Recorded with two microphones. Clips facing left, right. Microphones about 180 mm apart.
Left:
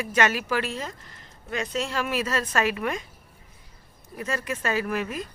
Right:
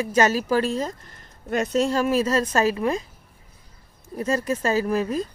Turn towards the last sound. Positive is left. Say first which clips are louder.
# right 5 dB
turn(degrees=-35)  # may be behind; listen again after turning